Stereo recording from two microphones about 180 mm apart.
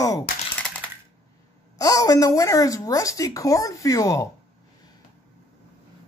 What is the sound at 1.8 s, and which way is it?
A woman's voice, 20° left (ahead or behind).